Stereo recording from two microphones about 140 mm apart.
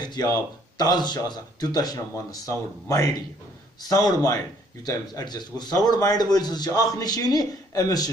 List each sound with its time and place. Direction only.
0.0 s speech: 30° left (ahead or behind)